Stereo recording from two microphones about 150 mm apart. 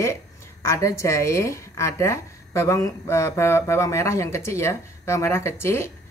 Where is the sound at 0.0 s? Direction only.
20° left (ahead or behind).